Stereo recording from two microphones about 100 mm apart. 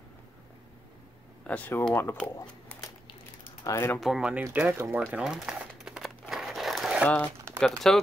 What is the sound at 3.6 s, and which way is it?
Speech, 30° left (ahead or behind).